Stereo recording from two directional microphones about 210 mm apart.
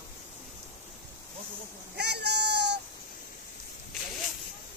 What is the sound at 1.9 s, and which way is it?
Speech, 50° right (ahead or behind).